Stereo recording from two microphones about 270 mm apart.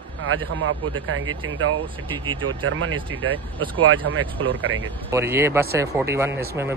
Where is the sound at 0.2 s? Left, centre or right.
Right.